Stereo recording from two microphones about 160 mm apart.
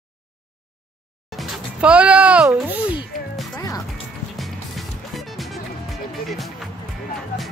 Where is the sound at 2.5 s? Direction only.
10° right (ahead or behind).